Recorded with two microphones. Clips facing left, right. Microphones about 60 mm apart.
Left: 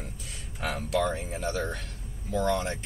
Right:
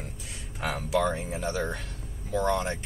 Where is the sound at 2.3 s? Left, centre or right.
Centre.